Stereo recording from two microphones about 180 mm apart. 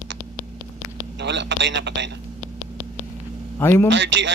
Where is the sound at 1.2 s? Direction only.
80° right.